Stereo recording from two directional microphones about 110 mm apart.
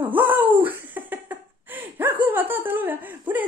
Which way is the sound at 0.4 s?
15° right (ahead or behind).